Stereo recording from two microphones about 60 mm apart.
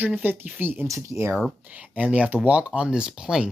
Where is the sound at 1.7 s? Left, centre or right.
Right.